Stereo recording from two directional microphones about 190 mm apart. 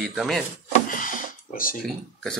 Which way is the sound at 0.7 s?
45° left (ahead or behind).